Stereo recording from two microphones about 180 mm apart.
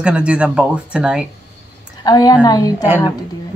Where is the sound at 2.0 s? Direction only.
20° left (ahead or behind).